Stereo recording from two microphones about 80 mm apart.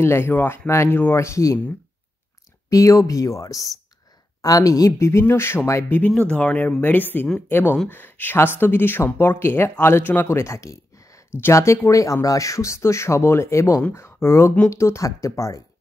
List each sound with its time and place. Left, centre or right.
0.0 s speech: left
1.2 s speech: left
2.7 s speech: left
6.1 s speech: centre
10.2 s a sound: left
11.4 s speech: left